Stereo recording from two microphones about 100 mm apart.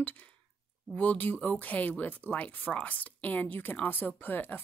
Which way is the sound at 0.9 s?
20° left (ahead or behind).